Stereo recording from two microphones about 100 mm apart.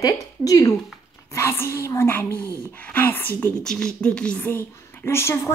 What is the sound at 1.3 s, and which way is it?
A woman's voice, 25° left (ahead or behind).